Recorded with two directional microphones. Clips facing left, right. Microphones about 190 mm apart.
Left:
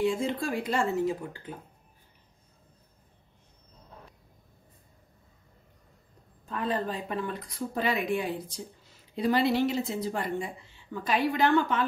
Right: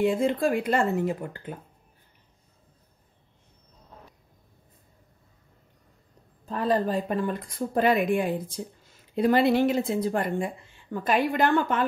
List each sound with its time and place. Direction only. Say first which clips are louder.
0.0 s speech: right 5 dB; 55° right (ahead or behind)
6.5 s speech: right 6 dB; 40° right (ahead or behind)